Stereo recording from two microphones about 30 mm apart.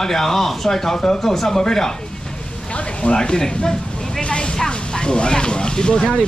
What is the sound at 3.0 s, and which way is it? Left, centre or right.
Speech, left.